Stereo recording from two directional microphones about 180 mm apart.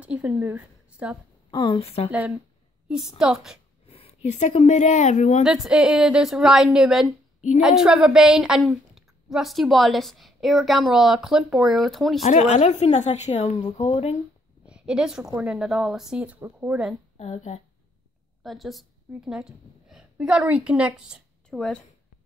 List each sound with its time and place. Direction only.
0.0 s a woman's voice: 5° right (ahead or behind)
1.5 s a woman's voice: 30° left (ahead or behind)
3.2 s a woman's voice: 5° right (ahead or behind)
3.8 s speech: 35° left (ahead or behind)
5.4 s a woman's voice: 5° right (ahead or behind)
12.3 s a woman's voice: 40° left (ahead or behind)
14.7 s a woman's voice: 5° right (ahead or behind)
17.2 s a woman's voice: 40° left (ahead or behind)
18.4 s a woman's voice: centre (ahead or behind)